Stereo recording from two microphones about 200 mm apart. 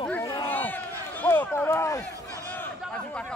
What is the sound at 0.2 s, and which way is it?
Crowd, 15° left (ahead or behind).